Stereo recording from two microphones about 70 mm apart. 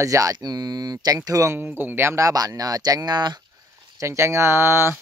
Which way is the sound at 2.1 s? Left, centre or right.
Right.